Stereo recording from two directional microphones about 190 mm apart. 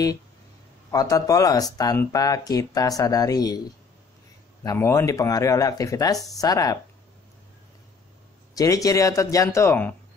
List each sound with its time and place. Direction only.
0.9 s speech: 20° left (ahead or behind)
4.6 s speech: 15° left (ahead or behind)
8.5 s speech: 15° left (ahead or behind)